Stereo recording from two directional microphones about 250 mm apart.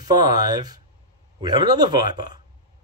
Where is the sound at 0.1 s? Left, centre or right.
Centre.